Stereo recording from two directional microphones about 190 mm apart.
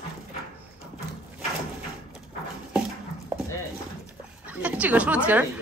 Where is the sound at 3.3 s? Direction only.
10° right (ahead or behind).